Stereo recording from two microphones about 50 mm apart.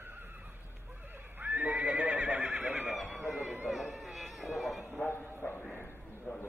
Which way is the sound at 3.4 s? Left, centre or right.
Right.